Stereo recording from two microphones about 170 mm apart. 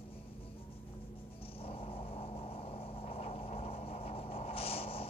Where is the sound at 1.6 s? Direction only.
35° left (ahead or behind).